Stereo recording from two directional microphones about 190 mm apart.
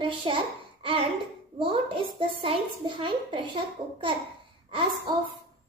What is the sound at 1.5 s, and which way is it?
A child's voice, 30° right (ahead or behind).